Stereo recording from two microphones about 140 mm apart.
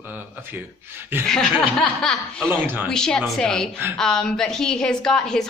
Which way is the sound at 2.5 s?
15° right (ahead or behind).